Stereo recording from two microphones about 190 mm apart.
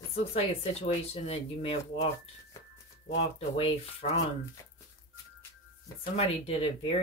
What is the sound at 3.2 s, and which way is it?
Speech, 30° left (ahead or behind).